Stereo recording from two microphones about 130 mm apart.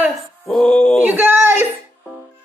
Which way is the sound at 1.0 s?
15° right (ahead or behind).